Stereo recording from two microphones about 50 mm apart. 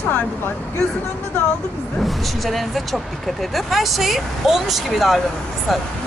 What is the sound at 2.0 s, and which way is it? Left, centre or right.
A woman's voice, centre.